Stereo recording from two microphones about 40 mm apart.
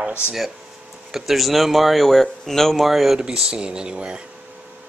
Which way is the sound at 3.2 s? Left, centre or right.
Right.